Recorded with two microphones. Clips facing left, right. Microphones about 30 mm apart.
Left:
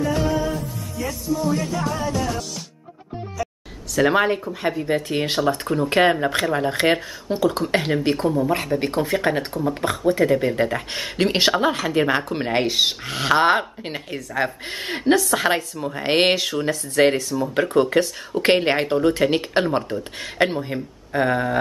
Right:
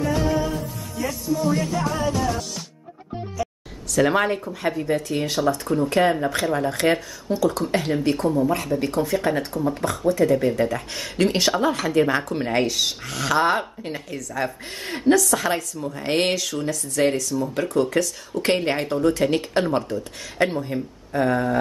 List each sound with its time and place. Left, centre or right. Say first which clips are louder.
3.9 s speech: left 1 dB; centre
4.8 s speech: left 1 dB; left
6.5 s speech: even; left
19.9 s speech: left 1 dB; left
20.4 s speech: right 1 dB; left